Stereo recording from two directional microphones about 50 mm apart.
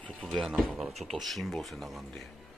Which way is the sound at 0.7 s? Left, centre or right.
Centre.